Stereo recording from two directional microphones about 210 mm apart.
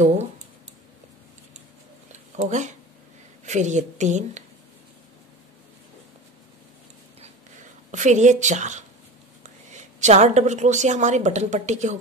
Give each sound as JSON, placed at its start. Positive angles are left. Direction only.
{"t": 2.1, "sound": "a sound", "side_deg": -35}
{"t": 3.4, "sound": "a woman's voice", "side_deg": -35}
{"t": 7.9, "sound": "a woman's voice", "side_deg": -35}